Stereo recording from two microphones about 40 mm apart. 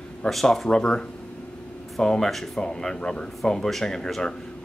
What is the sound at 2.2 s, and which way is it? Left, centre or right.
Speech, centre.